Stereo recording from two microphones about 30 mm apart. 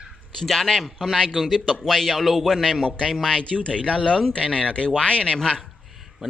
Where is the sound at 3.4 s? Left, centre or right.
Left.